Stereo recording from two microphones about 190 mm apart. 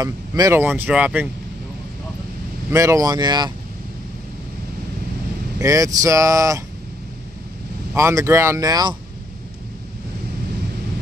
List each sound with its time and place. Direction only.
0.0 s speech: 15° right (ahead or behind)
2.7 s speech: 15° right (ahead or behind)
5.6 s speech: 15° right (ahead or behind)
7.9 s speech: 15° right (ahead or behind)